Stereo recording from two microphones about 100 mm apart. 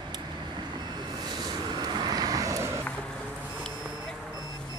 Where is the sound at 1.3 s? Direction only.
45° right (ahead or behind); by 2.8 s 30° right (ahead or behind).